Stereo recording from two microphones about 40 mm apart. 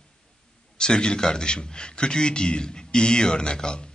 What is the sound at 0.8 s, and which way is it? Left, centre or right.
A man's voice, left.